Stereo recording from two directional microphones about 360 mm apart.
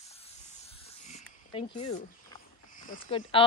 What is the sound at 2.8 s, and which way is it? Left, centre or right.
Speech, centre.